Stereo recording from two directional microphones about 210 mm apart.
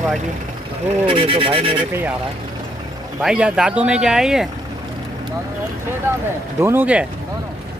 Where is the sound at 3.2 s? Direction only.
5° right (ahead or behind).